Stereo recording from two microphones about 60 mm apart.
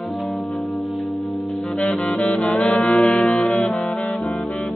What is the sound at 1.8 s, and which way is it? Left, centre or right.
Saxophone, left.